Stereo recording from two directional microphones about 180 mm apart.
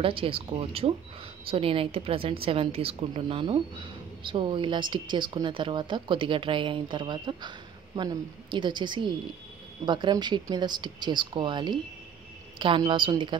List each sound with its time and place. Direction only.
0.0 s a woman's voice: 30° right (ahead or behind)